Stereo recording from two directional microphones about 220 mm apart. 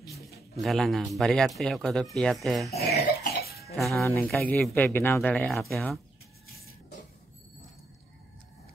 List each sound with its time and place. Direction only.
0.6 s speech: centre (ahead or behind)
2.9 s cough: 45° left (ahead or behind)
3.7 s speech: centre (ahead or behind)